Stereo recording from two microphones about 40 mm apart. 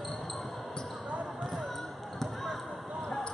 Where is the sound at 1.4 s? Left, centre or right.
Centre.